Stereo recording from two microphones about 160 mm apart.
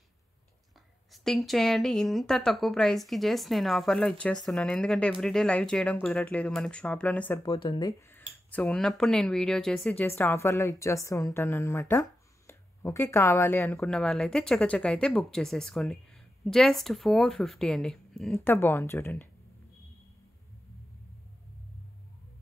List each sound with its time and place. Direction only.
1.1 s speech: centre (ahead or behind)
7.4 s speech: 30° left (ahead or behind)
8.1 s speech: 10° left (ahead or behind)
13.7 s speech: 5° left (ahead or behind)
18.4 s speech: 15° left (ahead or behind)